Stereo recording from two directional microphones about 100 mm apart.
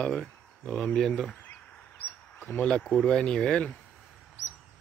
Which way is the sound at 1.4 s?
15° left (ahead or behind).